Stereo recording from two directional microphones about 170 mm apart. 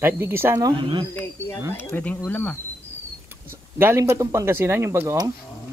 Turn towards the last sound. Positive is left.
turn(degrees=-15)  # may be behind; listen again after turning